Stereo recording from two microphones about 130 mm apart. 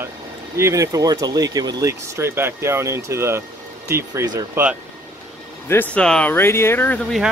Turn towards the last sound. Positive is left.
turn(degrees=15)  # may be behind; listen again after turning